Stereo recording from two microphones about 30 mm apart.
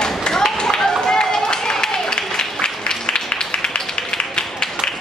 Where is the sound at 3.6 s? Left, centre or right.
Left.